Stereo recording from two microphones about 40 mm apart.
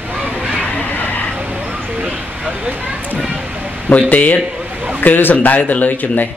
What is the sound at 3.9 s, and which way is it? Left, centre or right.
Speech, left.